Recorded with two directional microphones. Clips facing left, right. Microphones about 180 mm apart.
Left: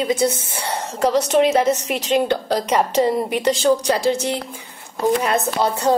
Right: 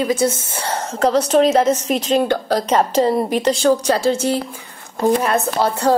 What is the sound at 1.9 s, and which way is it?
A woman's voice, 35° right (ahead or behind).